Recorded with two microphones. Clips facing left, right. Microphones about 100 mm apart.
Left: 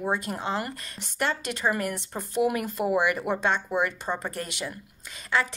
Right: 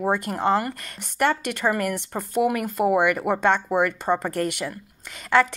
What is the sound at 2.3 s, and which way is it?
A woman's voice, 50° right (ahead or behind).